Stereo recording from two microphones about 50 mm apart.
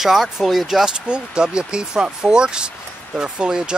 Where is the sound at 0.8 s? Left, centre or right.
Centre.